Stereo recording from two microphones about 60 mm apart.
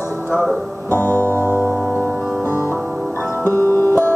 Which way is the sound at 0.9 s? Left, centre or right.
Left.